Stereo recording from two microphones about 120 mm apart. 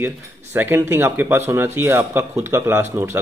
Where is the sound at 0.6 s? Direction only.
20° right (ahead or behind).